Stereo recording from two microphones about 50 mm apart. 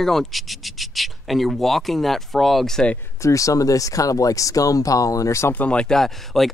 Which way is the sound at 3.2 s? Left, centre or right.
Left.